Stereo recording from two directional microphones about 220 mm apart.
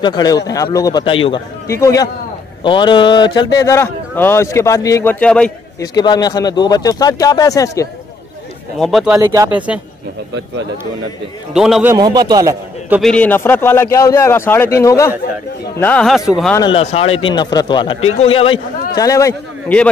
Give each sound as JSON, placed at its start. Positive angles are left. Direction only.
{"t": 0.0, "sound": "a man's voice", "side_deg": 20}
{"t": 1.7, "sound": "a man's voice", "side_deg": 15}
{"t": 5.8, "sound": "a man's voice", "side_deg": 20}
{"t": 8.7, "sound": "a man's voice", "side_deg": 0}
{"t": 9.1, "sound": "a man's voice", "side_deg": -15}
{"t": 11.5, "sound": "a man's voice", "side_deg": 0}
{"t": 11.9, "sound": "a man's voice", "side_deg": -20}
{"t": 13.0, "sound": "a man's voice", "side_deg": 5}
{"t": 16.5, "sound": "a man's voice", "side_deg": 25}